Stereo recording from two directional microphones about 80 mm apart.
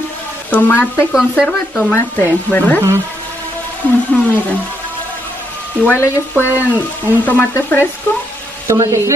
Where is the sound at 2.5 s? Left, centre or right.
Left.